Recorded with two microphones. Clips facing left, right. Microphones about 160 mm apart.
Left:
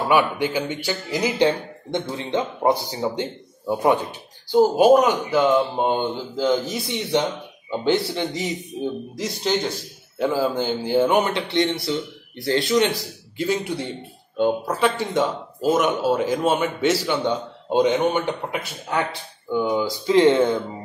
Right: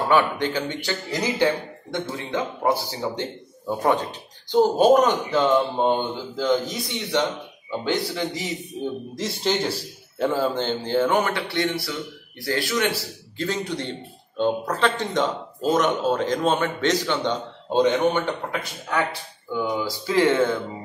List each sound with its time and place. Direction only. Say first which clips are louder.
0.1 s a man's voice: left 1 dB; 10° left (ahead or behind)
7.8 s speech: left 4 dB; 25° left (ahead or behind)
9.1 s a man's voice: even; centre (ahead or behind); by 20.5 s 20° left (ahead or behind)